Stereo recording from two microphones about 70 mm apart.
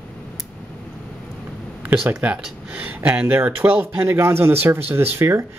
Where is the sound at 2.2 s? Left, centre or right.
Centre.